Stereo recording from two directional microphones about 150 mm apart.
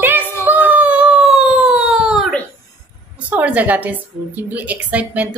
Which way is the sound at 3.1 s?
10° right (ahead or behind).